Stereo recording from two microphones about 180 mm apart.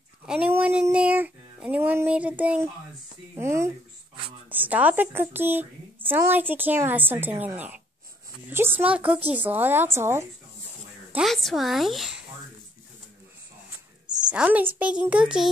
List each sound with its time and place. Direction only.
0.3 s child singing: 5° right (ahead or behind)
3.3 s a sound: 15° right (ahead or behind)
4.5 s a woman's voice: 10° right (ahead or behind)
11.1 s a child's voice: centre (ahead or behind)
14.0 s a sound: 20° right (ahead or behind)
14.3 s a child's voice: 5° right (ahead or behind)